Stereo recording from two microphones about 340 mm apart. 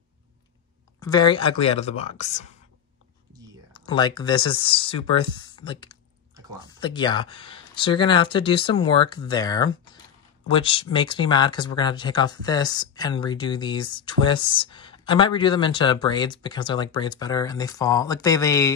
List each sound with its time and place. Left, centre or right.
0.9 s speech: centre
3.7 s speech: centre